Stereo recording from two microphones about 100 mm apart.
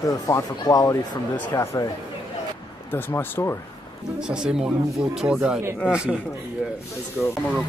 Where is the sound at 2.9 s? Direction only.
20° left (ahead or behind).